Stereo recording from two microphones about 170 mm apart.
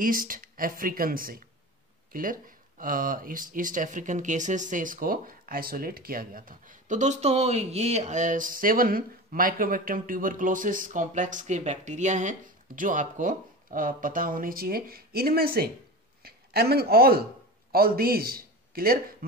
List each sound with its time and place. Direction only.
0.0 s a man's voice: 55° right (ahead or behind)